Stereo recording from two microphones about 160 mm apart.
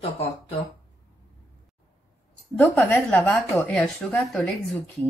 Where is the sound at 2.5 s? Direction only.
10° left (ahead or behind).